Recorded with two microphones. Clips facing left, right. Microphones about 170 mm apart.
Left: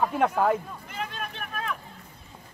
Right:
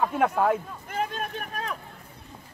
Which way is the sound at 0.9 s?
45° right (ahead or behind).